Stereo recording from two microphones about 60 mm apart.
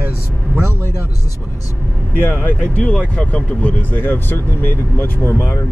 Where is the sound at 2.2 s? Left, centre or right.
Left.